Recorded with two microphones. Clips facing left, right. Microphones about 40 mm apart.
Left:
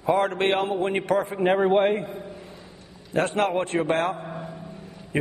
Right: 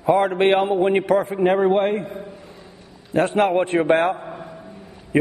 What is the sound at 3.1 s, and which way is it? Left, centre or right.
A man's voice, centre.